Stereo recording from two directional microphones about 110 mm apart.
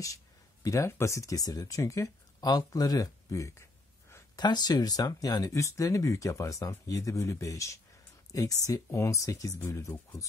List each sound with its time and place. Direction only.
0.0 s speech: 30° left (ahead or behind)
4.4 s speech: 40° left (ahead or behind)